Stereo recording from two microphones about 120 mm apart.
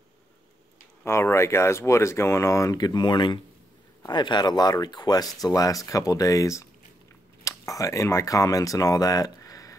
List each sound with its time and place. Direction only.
1.0 s speech: 20° left (ahead or behind)